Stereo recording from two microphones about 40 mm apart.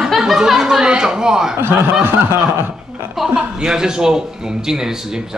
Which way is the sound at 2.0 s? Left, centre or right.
Right.